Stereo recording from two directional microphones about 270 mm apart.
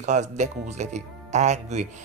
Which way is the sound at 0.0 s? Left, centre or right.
Right.